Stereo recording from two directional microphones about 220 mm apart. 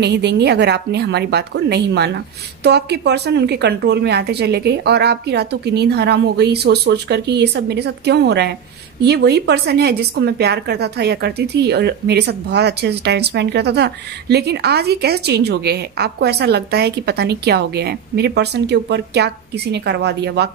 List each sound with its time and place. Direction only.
0.0 s a woman's voice: 50° right (ahead or behind)